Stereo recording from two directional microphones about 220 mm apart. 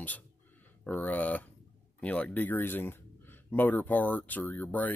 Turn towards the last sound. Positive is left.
turn(degrees=5)  # may be behind; listen again after turning